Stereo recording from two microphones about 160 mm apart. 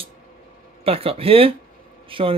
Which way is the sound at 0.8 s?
35° right (ahead or behind).